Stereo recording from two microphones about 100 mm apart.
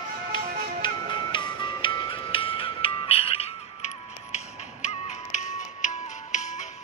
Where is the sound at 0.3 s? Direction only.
55° left (ahead or behind); by 4.4 s 90° left.